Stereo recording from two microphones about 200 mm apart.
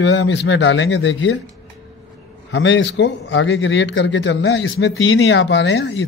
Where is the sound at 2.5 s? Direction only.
65° left (ahead or behind).